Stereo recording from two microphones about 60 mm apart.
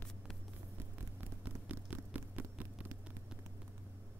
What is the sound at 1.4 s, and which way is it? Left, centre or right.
Vehicle, right.